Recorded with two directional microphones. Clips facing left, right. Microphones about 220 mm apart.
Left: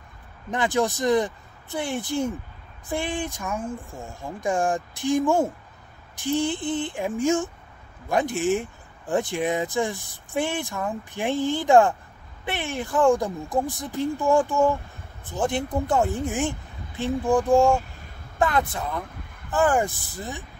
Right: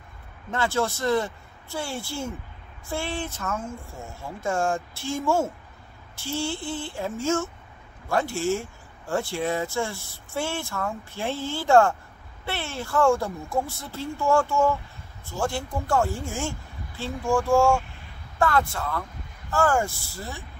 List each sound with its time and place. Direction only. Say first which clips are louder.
0.5 s speech: left 2 dB; 15° left (ahead or behind)